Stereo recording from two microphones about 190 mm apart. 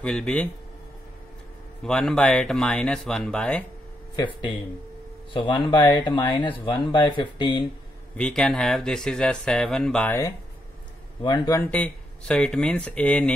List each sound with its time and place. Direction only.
0.0 s speech: 5° left (ahead or behind)
1.8 s speech: 5° left (ahead or behind)
5.3 s speech: 25° left (ahead or behind)
8.2 s speech: 5° left (ahead or behind)